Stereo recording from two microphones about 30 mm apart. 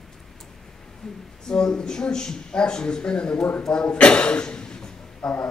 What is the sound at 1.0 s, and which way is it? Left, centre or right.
A man's voice, centre.